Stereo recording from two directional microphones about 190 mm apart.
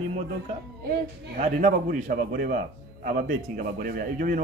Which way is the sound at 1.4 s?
45° right (ahead or behind).